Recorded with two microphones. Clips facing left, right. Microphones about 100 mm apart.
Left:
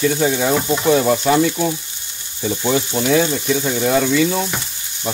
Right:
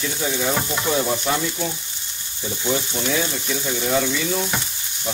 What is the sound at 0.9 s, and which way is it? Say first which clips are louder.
Frying: left 8 dB; 70° left (ahead or behind).